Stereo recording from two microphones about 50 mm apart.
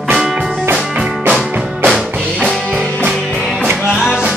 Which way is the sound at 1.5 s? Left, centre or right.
Centre.